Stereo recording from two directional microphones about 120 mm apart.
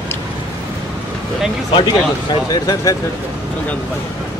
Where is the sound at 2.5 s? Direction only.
30° left (ahead or behind).